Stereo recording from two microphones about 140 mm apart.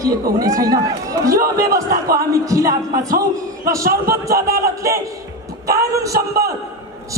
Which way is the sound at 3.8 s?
90° right.